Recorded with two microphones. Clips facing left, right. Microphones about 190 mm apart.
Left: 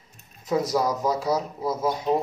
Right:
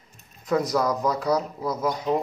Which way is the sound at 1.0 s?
5° left (ahead or behind).